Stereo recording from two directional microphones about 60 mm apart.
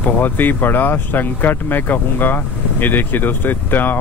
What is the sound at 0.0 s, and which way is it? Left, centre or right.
Speech, left.